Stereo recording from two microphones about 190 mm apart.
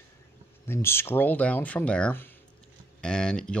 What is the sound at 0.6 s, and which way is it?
Speech, 15° left (ahead or behind).